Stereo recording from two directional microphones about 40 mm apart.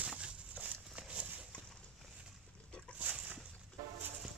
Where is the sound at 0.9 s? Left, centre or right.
Right.